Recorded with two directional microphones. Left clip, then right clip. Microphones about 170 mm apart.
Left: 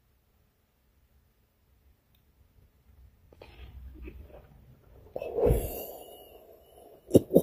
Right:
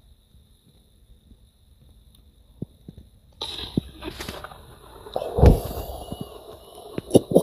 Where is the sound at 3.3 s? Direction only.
Centre (ahead or behind).